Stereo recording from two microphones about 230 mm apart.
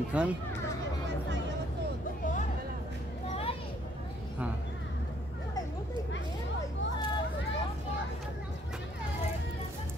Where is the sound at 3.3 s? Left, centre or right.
Left.